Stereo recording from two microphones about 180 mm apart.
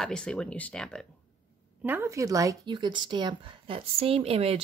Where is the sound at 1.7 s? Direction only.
10° right (ahead or behind); by 4.5 s 35° right (ahead or behind).